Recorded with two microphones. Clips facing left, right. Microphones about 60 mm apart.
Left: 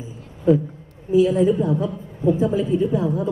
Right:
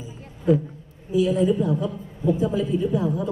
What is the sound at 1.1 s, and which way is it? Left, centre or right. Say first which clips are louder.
A man's voice: left 4 dB; left.